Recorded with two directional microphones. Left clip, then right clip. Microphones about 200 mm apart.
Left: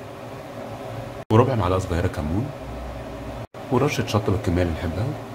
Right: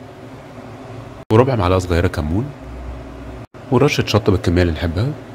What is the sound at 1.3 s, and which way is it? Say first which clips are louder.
Speech: right 5 dB; 20° right (ahead or behind).